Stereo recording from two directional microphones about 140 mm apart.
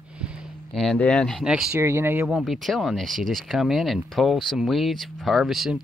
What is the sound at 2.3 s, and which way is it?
Speech, centre (ahead or behind).